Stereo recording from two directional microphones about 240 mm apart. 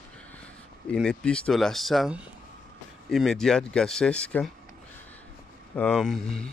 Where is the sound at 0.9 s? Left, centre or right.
Centre.